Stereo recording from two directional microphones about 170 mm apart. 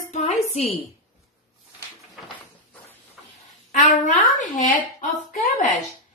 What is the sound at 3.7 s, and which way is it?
Speech, 45° left (ahead or behind).